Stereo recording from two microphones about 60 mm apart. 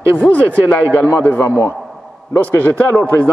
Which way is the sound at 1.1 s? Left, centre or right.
Left.